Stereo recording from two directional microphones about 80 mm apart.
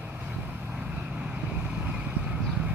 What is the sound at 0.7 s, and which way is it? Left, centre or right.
Vehicle, centre.